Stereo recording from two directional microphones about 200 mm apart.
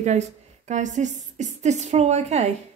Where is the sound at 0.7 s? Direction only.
35° right (ahead or behind).